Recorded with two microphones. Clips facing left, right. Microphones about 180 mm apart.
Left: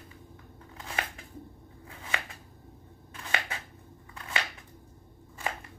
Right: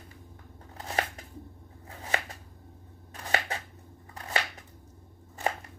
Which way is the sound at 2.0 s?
40° right (ahead or behind).